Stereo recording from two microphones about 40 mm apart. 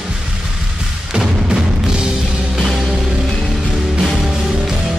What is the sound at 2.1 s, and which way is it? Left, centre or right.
Music, centre.